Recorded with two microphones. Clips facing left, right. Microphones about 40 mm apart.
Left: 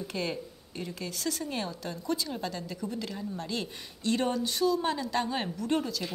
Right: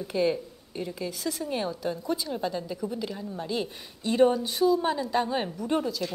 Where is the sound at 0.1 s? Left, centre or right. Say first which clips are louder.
Right 11 dB; centre.